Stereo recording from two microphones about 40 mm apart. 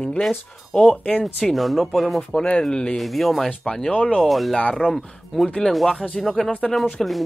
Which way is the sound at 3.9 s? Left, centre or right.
Left.